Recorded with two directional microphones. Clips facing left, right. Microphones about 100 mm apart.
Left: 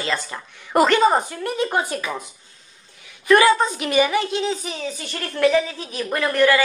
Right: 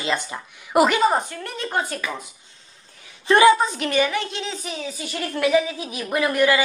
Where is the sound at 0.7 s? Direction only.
5° right (ahead or behind).